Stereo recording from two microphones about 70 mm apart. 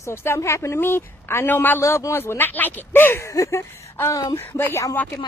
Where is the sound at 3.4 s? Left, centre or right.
Left.